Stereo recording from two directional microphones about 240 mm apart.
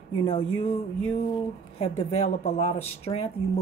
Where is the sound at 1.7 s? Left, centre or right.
Left.